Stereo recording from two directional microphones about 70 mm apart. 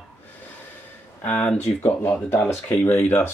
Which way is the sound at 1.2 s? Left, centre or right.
Centre.